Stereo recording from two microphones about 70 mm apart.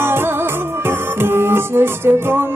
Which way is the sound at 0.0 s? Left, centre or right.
Right.